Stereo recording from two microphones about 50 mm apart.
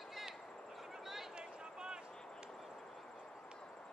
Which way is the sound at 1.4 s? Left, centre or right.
Centre.